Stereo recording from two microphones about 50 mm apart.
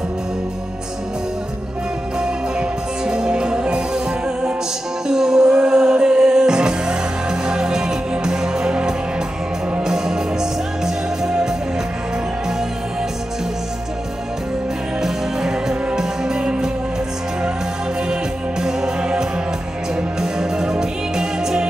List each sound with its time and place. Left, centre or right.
2.1 s music: centre
15.0 s music: centre
18.6 s music: centre